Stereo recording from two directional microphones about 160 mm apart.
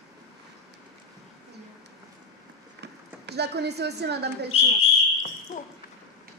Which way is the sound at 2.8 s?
90° right.